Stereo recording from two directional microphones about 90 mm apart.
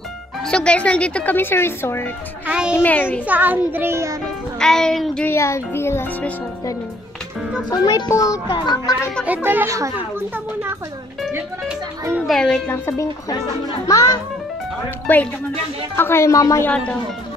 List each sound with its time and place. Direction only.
0.5 s speech: 10° left (ahead or behind); by 2.0 s 25° left (ahead or behind)
2.4 s a child's voice: 10° right (ahead or behind)
2.7 s a child's voice: 20° left (ahead or behind)
3.3 s a child's voice: 20° right (ahead or behind)
4.6 s speech: 5° left (ahead or behind)
5.2 s a child's voice: 30° left (ahead or behind)
7.7 s a child's voice: 45° left (ahead or behind)
9.2 s a child's voice: 20° right (ahead or behind)
9.7 s a child's voice: 35° right (ahead or behind)
9.9 s speech: 25° right (ahead or behind)
12.3 s speech: 5° left (ahead or behind)
12.6 s a woman's voice: 30° left (ahead or behind)
15.1 s a child's voice: 20° left (ahead or behind); by 16.6 s 35° left (ahead or behind)
16.6 s speech: 15° left (ahead or behind)